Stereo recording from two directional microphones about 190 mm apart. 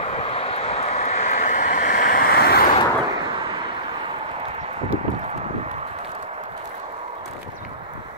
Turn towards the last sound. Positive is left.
turn(degrees=-35)  # may be behind; listen again after turning